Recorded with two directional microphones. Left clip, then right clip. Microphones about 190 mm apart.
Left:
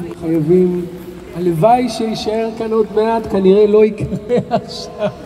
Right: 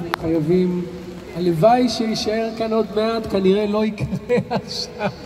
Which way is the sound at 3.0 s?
35° right (ahead or behind).